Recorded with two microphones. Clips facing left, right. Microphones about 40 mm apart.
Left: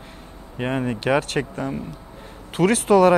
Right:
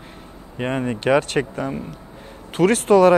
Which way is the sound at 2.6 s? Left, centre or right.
Centre.